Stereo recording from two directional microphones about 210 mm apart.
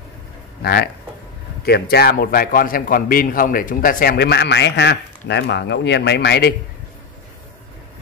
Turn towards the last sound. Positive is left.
turn(degrees=50)  # may be behind; listen again after turning